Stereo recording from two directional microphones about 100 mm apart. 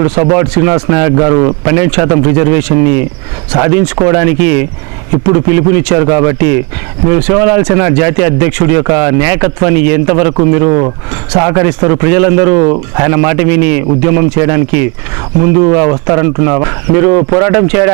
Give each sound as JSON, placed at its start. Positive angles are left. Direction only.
{"t": 0.0, "sound": "speech", "side_deg": -20}